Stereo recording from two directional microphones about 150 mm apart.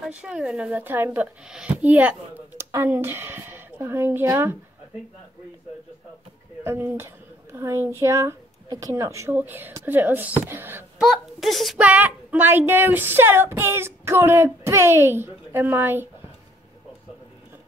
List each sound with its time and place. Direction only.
0.1 s a woman's voice: 5° right (ahead or behind)
6.6 s a woman's voice: 15° right (ahead or behind)
11.0 s a woman's voice: centre (ahead or behind)